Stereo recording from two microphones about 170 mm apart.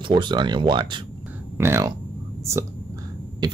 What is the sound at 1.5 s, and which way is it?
Speech, 15° right (ahead or behind).